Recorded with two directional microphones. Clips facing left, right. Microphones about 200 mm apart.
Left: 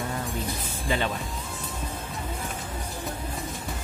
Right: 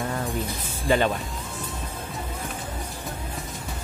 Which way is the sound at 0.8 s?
50° right (ahead or behind).